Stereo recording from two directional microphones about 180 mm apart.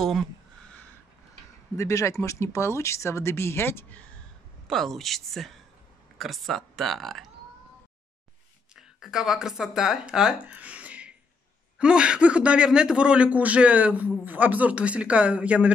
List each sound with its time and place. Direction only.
0.0 s a sound: centre (ahead or behind)
1.8 s speech: 15° left (ahead or behind); by 7.2 s centre (ahead or behind)
8.7 s a man's voice: 5° right (ahead or behind)